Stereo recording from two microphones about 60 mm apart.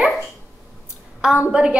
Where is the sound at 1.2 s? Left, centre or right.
Centre.